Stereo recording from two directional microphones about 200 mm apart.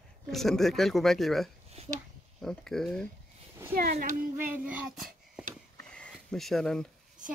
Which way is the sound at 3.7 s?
45° right (ahead or behind).